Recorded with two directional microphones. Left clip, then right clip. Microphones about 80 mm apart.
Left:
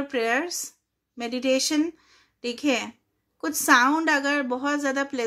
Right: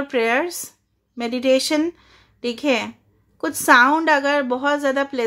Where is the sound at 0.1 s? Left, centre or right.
Right.